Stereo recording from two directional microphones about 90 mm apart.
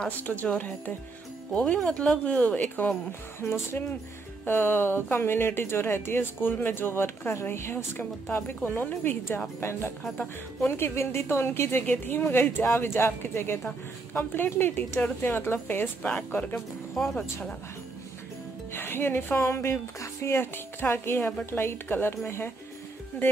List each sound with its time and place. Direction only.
0.5 s a woman's voice: 15° left (ahead or behind)
16.5 s speech: 5° left (ahead or behind)
18.7 s a woman's voice: 25° left (ahead or behind)